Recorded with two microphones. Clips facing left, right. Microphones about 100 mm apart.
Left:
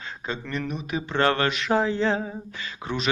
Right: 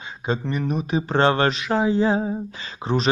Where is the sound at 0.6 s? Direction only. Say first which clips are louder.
Right 6 dB; 35° right (ahead or behind).